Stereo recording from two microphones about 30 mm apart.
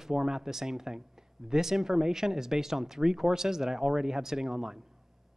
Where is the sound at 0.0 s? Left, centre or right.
Centre.